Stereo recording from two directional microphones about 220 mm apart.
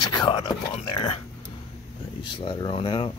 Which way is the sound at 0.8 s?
20° left (ahead or behind).